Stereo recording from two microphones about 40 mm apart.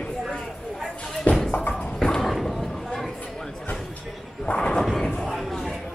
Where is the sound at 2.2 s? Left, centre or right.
Centre.